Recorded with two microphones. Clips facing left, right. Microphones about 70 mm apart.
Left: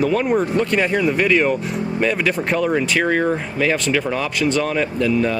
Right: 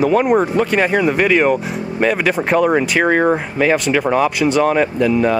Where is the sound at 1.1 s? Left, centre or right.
Centre.